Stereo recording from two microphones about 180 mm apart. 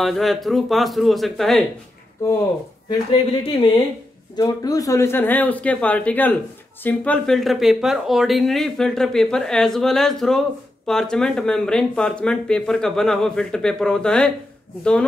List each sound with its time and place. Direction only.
0.0 s speech: centre (ahead or behind)
2.9 s speech: 30° left (ahead or behind)
4.4 s speech: 20° left (ahead or behind)